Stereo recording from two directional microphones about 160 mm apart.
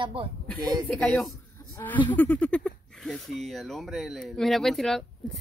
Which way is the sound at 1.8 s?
20° left (ahead or behind).